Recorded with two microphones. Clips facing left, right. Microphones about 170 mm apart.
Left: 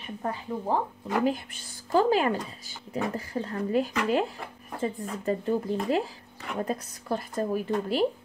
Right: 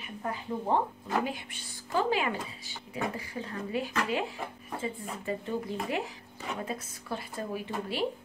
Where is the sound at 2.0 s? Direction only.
40° left (ahead or behind).